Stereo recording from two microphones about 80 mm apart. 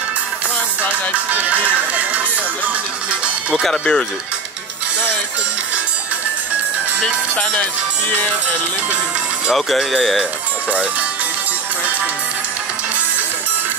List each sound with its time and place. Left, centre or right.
1.1 s music: centre
3.6 s speech: centre
7.0 s speech: centre
9.5 s speech: centre